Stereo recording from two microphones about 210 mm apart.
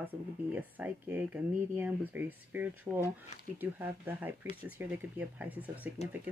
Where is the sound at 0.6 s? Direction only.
10° right (ahead or behind).